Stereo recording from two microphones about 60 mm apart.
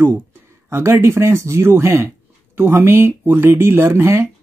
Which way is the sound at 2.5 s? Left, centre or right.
Right.